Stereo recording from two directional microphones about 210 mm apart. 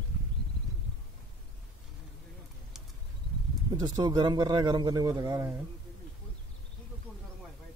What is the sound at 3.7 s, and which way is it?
A man's voice, 20° right (ahead or behind).